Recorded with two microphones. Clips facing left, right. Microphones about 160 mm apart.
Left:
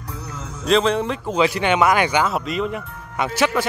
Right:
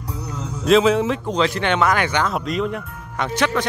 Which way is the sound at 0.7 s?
Centre (ahead or behind).